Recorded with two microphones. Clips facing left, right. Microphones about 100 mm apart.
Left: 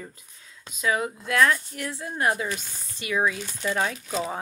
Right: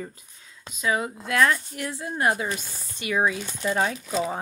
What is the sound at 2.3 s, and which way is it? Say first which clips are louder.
Speech: right 1 dB; 25° right (ahead or behind).